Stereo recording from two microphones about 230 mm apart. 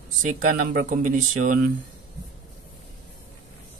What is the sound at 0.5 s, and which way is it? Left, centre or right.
Speech, right.